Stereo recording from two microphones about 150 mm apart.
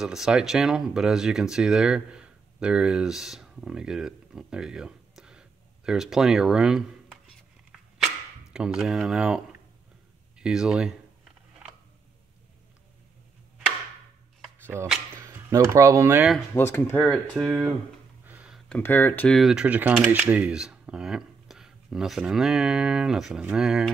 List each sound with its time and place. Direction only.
0.0 s speech: 5° right (ahead or behind)
8.5 s speech: 5° right (ahead or behind)
10.4 s a sound: 5° right (ahead or behind)
14.6 s a sound: 15° right (ahead or behind)
15.1 s speech: 20° right (ahead or behind)
16.5 s speech: 20° left (ahead or behind)
17.5 s speech: 5° right (ahead or behind)
18.2 s a sound: 10° right (ahead or behind)
18.7 s speech: 15° left (ahead or behind)
19.3 s speech: 5° right (ahead or behind)